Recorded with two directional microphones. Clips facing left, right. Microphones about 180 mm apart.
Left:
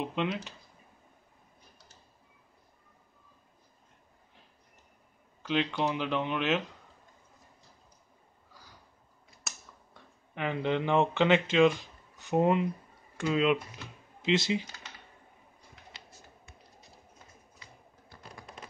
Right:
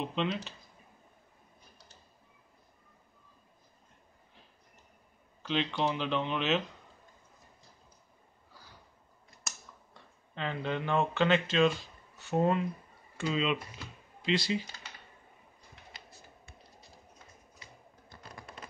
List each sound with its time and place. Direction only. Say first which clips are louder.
0.0 s speech: left 1 dB; 10° left (ahead or behind)
5.4 s speech: left 2 dB; 10° left (ahead or behind)
9.5 s scissors: even; centre (ahead or behind)
10.3 s speech: left 4 dB; 15° left (ahead or behind)
14.2 s speech: left 3 dB; 20° left (ahead or behind)